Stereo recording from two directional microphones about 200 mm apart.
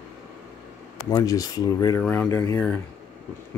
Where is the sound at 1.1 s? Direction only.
20° left (ahead or behind).